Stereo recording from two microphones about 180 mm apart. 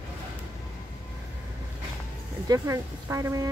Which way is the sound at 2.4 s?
15° right (ahead or behind).